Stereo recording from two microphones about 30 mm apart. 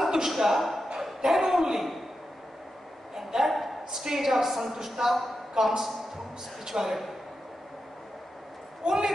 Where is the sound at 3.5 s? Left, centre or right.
Centre.